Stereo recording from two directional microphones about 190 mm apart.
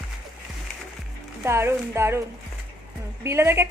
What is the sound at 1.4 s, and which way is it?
Speech, 15° right (ahead or behind).